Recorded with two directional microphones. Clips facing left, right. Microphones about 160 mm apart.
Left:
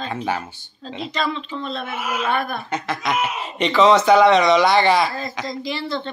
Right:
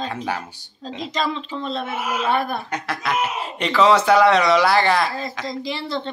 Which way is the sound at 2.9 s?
5° right (ahead or behind).